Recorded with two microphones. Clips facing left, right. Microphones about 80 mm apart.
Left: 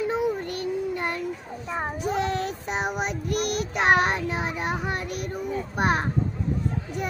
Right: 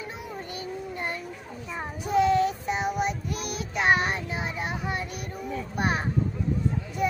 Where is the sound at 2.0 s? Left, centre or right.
Left.